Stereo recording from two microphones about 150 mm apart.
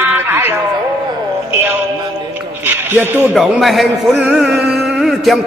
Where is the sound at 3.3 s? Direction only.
Centre (ahead or behind).